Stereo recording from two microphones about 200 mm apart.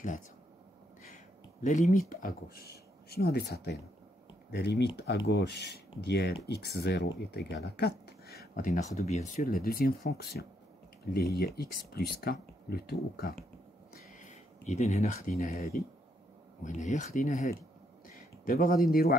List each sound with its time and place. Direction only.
1.1 s a sound: 40° left (ahead or behind)
2.0 s speech: 45° left (ahead or behind)
13.9 s speech: 35° left (ahead or behind)
16.6 s speech: 35° left (ahead or behind)
18.0 s a sound: 45° left (ahead or behind)
18.9 s speech: 50° left (ahead or behind)